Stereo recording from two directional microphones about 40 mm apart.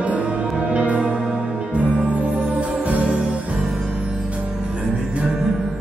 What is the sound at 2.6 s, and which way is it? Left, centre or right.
Music, right.